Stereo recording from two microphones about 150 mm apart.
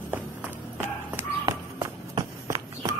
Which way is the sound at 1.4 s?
25° right (ahead or behind).